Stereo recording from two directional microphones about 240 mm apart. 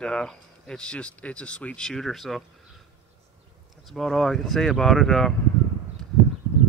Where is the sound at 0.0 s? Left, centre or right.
Centre.